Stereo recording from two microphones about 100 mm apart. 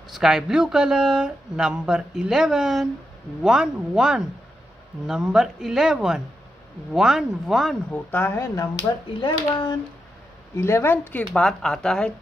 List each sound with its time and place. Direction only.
0.1 s speech: 5° right (ahead or behind)
7.9 s speech: 20° left (ahead or behind)
9.2 s speech: 50° left (ahead or behind)
10.5 s speech: 25° left (ahead or behind)
11.3 s speech: 5° left (ahead or behind)